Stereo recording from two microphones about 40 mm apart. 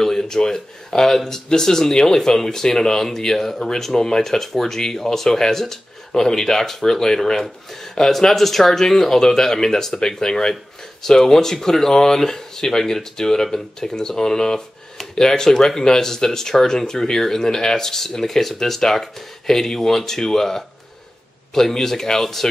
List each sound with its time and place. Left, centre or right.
0.0 s speech: centre